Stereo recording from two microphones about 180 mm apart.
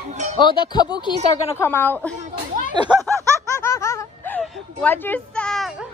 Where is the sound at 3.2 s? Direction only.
15° right (ahead or behind).